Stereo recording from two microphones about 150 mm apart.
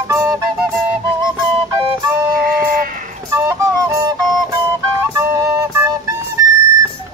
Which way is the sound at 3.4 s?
15° right (ahead or behind).